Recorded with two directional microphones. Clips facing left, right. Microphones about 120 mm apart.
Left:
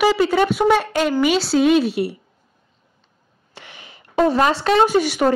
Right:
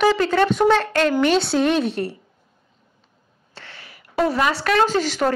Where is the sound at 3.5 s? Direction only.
15° left (ahead or behind).